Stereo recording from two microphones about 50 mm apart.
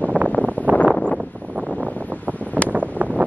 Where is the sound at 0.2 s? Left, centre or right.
Right.